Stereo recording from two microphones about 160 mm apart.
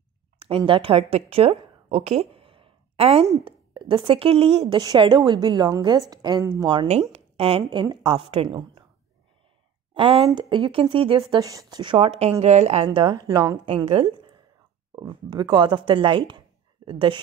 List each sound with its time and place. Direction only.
0.4 s a woman's voice: 35° right (ahead or behind)
6.9 s speech: 40° right (ahead or behind)
9.9 s a woman's voice: 35° right (ahead or behind)
13.8 s speech: 35° right (ahead or behind)